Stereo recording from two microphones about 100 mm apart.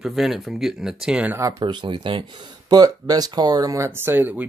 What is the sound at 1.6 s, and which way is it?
Speech, 50° right (ahead or behind).